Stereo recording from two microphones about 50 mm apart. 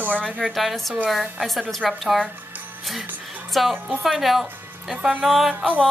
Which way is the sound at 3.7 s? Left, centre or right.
Right.